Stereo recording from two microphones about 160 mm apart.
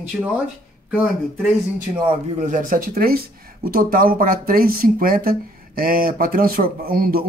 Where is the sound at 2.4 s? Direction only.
55° right (ahead or behind).